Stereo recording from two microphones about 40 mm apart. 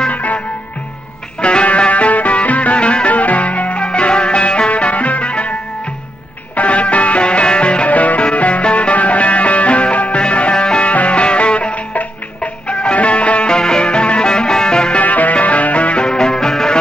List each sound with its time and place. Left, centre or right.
0.1 s music: left
1.4 s music: left
6.5 s music: left
15.0 s music: left
16.1 s music: centre